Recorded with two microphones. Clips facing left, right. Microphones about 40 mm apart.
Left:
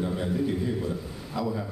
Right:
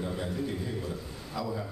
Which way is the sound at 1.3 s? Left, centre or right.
Centre.